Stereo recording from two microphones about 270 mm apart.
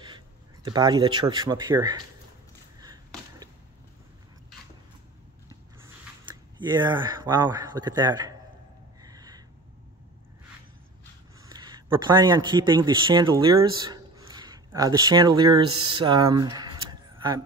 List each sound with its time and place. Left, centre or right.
0.7 s speech: centre
2.8 s chop: centre
5.9 s speech: centre
9.0 s a sound: centre
11.4 s speech: centre